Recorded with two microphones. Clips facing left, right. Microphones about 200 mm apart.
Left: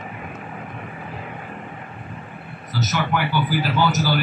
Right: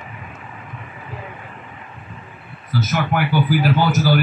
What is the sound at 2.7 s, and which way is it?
A man's voice, 50° right (ahead or behind).